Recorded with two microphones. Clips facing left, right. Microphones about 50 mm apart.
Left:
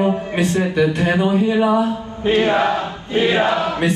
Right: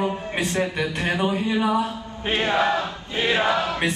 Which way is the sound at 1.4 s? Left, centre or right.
Left.